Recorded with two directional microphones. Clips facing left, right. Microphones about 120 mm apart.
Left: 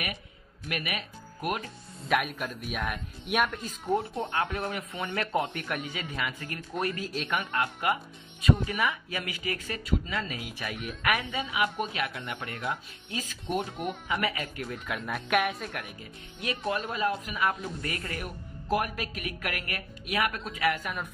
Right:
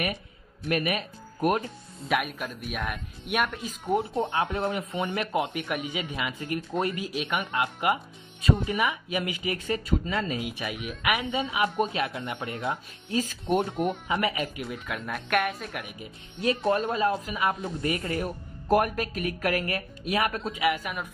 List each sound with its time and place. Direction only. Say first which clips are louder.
0.7 s speech: right 7 dB; 35° right (ahead or behind)
2.0 s speech: even; centre (ahead or behind)
4.3 s speech: right 3 dB; 25° right (ahead or behind)
7.1 s speech: right 2 dB; 5° right (ahead or behind)
7.6 s speech: right 3 dB; 20° right (ahead or behind)
9.8 s speech: even; 35° right (ahead or behind)
10.5 s speech: right 2 dB; 10° right (ahead or behind)
11.3 s speech: right 4 dB; 30° right (ahead or behind)
14.5 s speech: right 1 dB; 5° right (ahead or behind)
16.3 s speech: right 7 dB; 35° right (ahead or behind)
18.7 s speech: right 6 dB; 45° right (ahead or behind)
20.6 s speech: right 1 dB; 10° right (ahead or behind)